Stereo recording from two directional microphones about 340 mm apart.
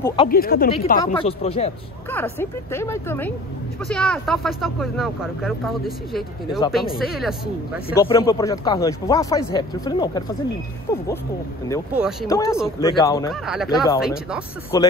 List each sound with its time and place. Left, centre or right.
0.0 s speech: centre
0.3 s speech: left
2.0 s speech: centre
7.9 s speech: centre
11.9 s speech: centre
12.3 s speech: centre
13.3 s speech: centre
14.7 s speech: centre